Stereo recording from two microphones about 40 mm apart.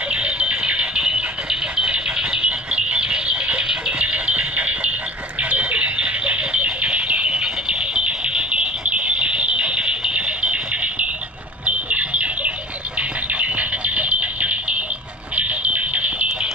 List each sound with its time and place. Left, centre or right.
0.1 s music: right
1.9 s a sound: right
15.3 s fire alarm: right